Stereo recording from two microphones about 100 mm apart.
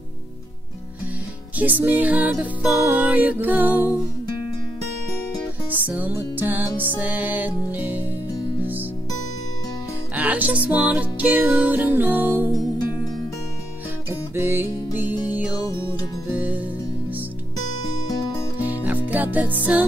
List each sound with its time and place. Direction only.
1.6 s music: 15° right (ahead or behind)
5.7 s music: 15° right (ahead or behind)
10.1 s music: 15° right (ahead or behind)
14.3 s music: 25° right (ahead or behind)
18.6 s music: 15° right (ahead or behind)